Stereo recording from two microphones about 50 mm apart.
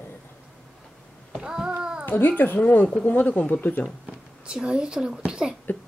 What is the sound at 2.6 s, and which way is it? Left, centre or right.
Speech, left.